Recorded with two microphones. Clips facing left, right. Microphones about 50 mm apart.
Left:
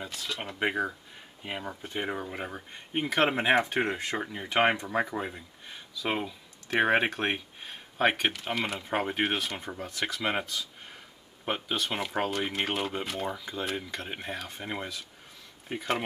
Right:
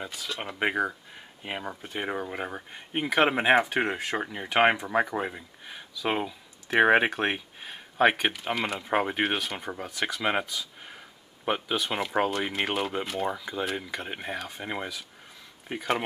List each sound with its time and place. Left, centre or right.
0.0 s speech: centre
5.7 s speech: centre